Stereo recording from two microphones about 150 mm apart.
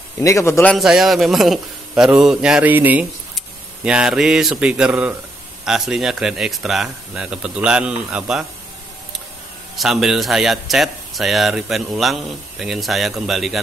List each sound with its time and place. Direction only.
0.2 s a man's voice: 20° left (ahead or behind)
0.7 s speech: centre (ahead or behind)
9.8 s speech: centre (ahead or behind)